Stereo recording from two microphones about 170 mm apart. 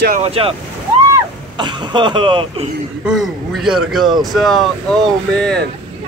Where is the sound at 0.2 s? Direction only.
35° right (ahead or behind).